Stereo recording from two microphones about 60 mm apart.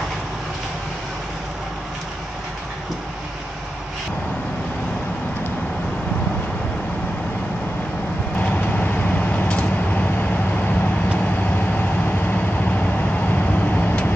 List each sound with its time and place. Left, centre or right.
8.4 s vehicle: left